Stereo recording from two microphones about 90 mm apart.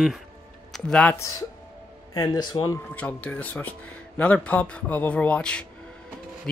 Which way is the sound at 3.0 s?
15° left (ahead or behind).